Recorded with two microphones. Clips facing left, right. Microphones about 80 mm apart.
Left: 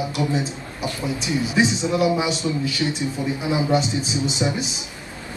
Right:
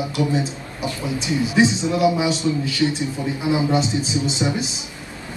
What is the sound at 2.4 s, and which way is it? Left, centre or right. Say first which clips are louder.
Speech: right 3 dB; centre.